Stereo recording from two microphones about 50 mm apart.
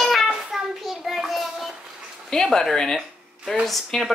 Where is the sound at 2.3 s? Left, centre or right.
Centre.